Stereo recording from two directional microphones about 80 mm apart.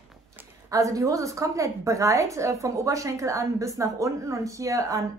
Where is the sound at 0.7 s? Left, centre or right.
Right.